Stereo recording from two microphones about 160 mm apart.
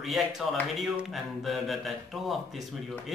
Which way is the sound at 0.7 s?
Centre (ahead or behind).